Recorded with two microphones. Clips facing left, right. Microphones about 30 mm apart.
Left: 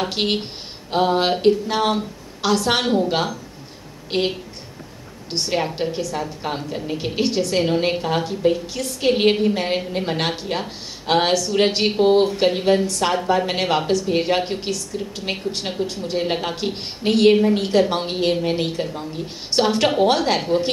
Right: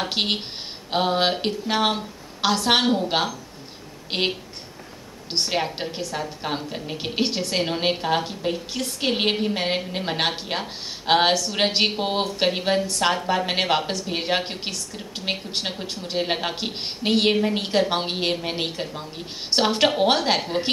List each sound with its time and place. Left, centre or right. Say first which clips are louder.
0.2 s a woman's voice: left 2 dB; centre
2.8 s a woman's voice: left 2 dB; centre
5.3 s a woman's voice: left 2 dB; centre